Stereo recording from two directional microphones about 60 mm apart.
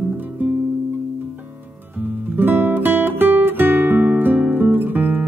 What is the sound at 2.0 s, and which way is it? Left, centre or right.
Music, right.